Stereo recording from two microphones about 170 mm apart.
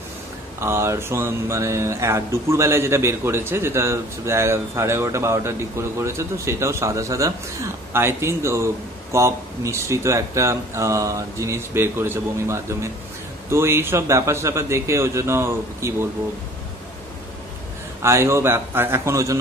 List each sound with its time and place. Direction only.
0.6 s speech: 15° right (ahead or behind)
18.0 s speech: 15° right (ahead or behind)